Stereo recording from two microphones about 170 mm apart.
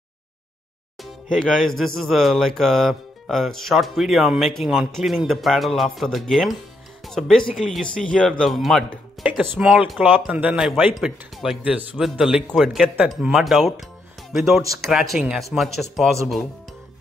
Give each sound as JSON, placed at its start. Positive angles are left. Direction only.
{"t": 1.0, "sound": "music", "side_deg": 0}
{"t": 14.3, "sound": "speech", "side_deg": 0}
{"t": 14.8, "sound": "music", "side_deg": 0}